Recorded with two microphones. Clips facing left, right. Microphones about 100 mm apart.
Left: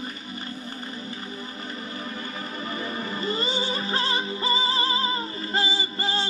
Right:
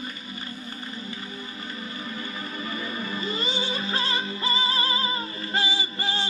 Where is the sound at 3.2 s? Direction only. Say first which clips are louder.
Left 3 dB; 35° left (ahead or behind).